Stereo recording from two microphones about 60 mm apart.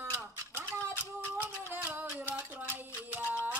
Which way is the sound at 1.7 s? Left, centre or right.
Right.